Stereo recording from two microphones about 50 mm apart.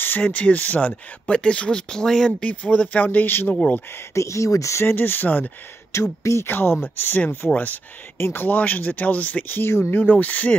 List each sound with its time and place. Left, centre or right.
0.2 s speech: left; by 2.3 s centre
2.6 s speech: left
3.3 s speech: left
4.1 s speech: left
4.8 s speech: left
5.9 s speech: left
6.4 s speech: left
8.5 s speech: left
9.6 s speech: left
9.9 s speech: left